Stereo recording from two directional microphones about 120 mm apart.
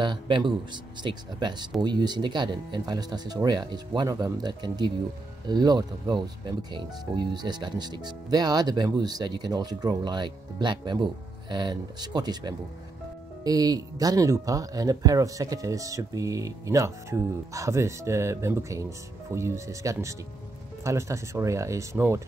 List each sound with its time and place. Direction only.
0.0 s speech: 40° right (ahead or behind); by 22.2 s 20° right (ahead or behind)